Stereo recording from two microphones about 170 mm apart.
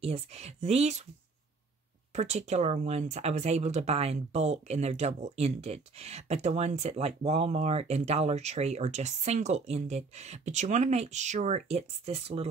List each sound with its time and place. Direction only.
0.0 s speech: 40° right (ahead or behind)
2.1 s speech: 40° right (ahead or behind)